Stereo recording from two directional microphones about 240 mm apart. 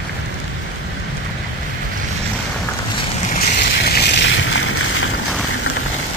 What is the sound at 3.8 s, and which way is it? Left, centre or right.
Boat, left.